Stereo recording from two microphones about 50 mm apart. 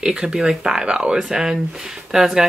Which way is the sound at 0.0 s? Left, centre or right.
Centre.